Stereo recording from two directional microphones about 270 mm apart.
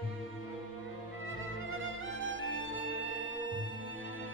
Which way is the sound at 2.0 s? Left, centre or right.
Right.